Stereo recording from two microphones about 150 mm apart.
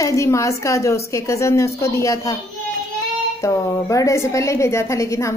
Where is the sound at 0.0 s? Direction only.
20° left (ahead or behind).